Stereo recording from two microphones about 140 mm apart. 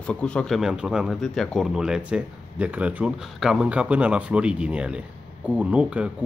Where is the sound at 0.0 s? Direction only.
10° left (ahead or behind).